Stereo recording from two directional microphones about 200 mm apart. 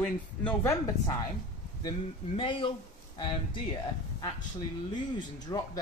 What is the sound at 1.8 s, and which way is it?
Speech, 25° left (ahead or behind).